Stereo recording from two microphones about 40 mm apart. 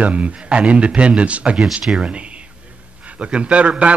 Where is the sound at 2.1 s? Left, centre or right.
Right.